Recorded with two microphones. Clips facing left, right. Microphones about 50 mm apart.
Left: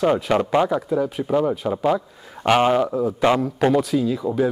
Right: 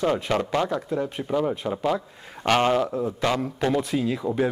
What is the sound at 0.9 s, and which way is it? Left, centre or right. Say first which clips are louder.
Speech: left 5 dB; centre.